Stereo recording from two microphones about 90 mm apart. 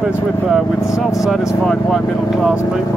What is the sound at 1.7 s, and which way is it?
Speech, 5° left (ahead or behind).